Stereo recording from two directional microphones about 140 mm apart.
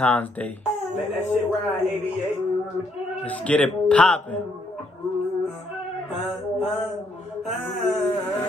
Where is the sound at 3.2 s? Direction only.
10° left (ahead or behind).